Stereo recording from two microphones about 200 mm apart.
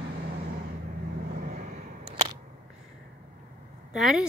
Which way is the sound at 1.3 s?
40° right (ahead or behind).